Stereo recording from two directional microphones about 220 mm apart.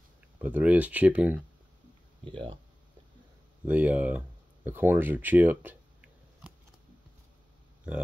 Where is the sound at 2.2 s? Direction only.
25° right (ahead or behind).